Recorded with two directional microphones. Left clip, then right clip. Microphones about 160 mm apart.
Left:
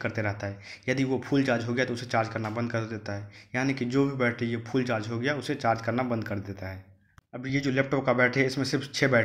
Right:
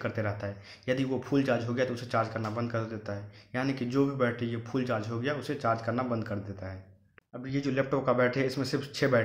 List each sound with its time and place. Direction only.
0.0 s speech: 25° left (ahead or behind)